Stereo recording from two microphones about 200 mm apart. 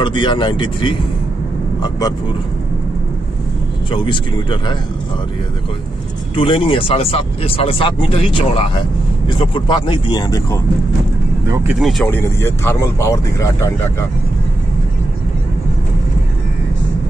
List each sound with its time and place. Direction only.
0.0 s speech: 25° left (ahead or behind)
3.9 s speech: 25° left (ahead or behind)
6.3 s speech: 25° left (ahead or behind)
11.4 s speech: 15° right (ahead or behind)
11.8 s speech: 5° left (ahead or behind)